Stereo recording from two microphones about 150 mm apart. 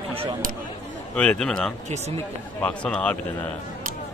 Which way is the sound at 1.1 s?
10° left (ahead or behind).